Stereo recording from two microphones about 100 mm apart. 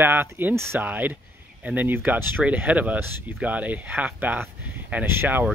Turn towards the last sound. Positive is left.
turn(degrees=-20)  # may be behind; listen again after turning